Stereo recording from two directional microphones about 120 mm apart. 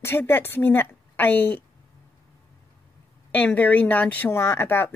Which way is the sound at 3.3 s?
15° left (ahead or behind).